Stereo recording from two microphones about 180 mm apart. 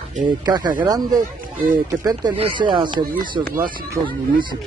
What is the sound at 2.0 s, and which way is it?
Speech, 20° right (ahead or behind).